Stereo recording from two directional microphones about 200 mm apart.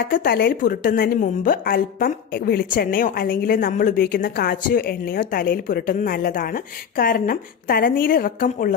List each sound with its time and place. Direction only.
0.0 s a woman's voice: 45° left (ahead or behind)